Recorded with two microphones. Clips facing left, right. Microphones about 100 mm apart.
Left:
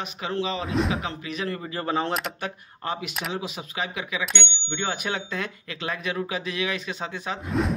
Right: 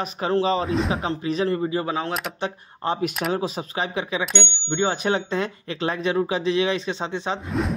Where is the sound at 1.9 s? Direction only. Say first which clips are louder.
Even; centre (ahead or behind).